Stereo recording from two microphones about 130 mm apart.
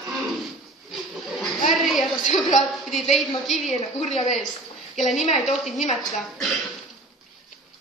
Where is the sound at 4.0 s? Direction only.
60° left (ahead or behind).